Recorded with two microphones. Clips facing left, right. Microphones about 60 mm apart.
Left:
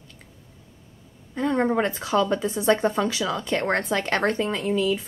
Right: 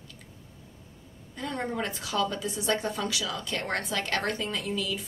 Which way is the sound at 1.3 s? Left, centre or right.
Left.